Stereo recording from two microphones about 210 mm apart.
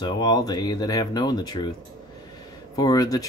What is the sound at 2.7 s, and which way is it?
Speech, 15° left (ahead or behind).